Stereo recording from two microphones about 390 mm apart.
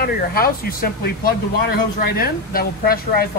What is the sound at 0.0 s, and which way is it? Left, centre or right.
Speech, left.